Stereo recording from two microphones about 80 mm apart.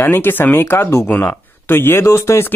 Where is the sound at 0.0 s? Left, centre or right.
Left.